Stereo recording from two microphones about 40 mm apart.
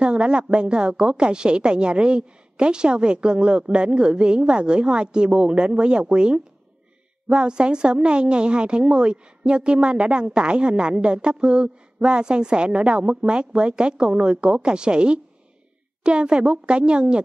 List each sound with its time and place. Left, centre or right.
0.0 s a woman's voice: right